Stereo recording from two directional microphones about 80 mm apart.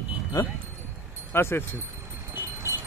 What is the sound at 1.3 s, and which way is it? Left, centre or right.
Speech, left.